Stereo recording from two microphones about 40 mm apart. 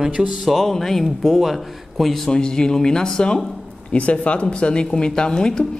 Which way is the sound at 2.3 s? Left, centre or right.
Centre.